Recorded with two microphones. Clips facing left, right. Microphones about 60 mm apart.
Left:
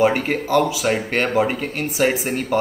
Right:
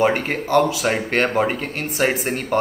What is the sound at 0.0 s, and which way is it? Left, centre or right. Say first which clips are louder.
Speech: left 1 dB; centre.